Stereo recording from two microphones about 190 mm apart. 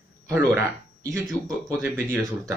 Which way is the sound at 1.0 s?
Centre (ahead or behind).